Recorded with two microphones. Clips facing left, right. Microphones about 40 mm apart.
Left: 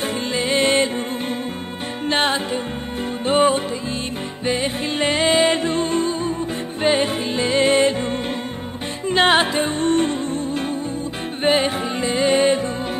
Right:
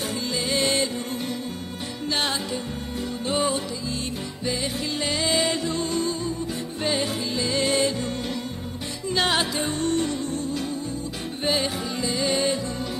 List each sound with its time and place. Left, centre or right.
0.3 s music: left
2.0 s music: left
9.1 s music: left